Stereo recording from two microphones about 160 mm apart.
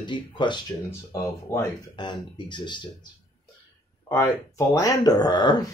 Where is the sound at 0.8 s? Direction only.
15° left (ahead or behind).